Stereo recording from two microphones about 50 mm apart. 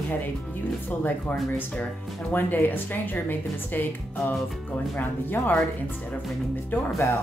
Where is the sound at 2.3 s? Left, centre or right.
Left.